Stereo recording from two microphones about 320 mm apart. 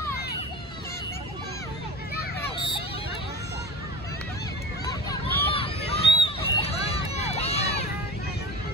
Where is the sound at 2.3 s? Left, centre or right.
Centre.